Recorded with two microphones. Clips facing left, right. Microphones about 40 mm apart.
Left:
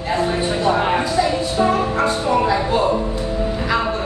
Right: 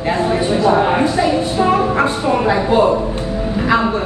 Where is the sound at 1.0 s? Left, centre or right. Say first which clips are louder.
Right 4 dB; right.